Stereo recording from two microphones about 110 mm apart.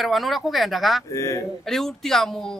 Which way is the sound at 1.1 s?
30° left (ahead or behind).